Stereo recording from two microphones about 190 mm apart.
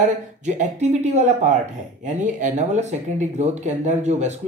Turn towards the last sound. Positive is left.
turn(degrees=-35)  # may be behind; listen again after turning